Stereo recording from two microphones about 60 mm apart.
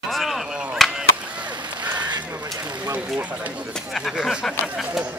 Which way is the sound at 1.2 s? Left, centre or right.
Right.